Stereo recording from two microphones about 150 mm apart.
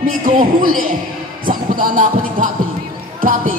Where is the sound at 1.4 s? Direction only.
65° right (ahead or behind).